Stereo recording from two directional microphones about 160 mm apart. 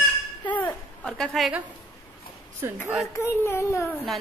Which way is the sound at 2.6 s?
15° right (ahead or behind).